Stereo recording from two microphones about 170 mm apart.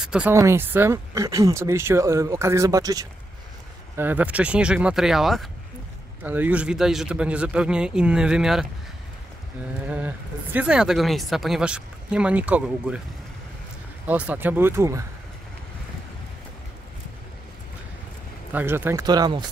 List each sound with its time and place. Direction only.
0.0 s a sound: 5° right (ahead or behind)
0.3 s speech: 15° right (ahead or behind)
3.9 s speech: 10° right (ahead or behind)
9.8 s speech: 10° right (ahead or behind)
14.0 s speech: 10° right (ahead or behind)
18.5 s speech: 10° right (ahead or behind)